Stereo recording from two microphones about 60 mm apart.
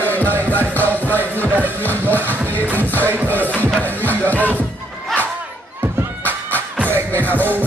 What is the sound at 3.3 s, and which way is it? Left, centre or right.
Speech, left.